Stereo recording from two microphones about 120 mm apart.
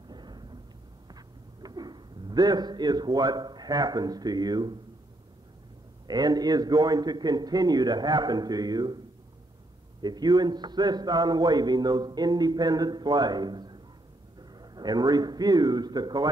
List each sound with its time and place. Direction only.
0.1 s thunder: 35° right (ahead or behind)
1.0 s a sound: 35° right (ahead or behind)
6.0 s a man's voice: 35° right (ahead or behind)
10.0 s a man's voice: 35° right (ahead or behind)